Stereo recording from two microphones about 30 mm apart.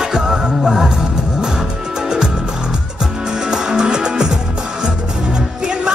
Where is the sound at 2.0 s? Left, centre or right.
Right.